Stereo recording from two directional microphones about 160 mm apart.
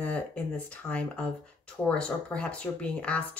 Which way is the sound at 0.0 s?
10° left (ahead or behind).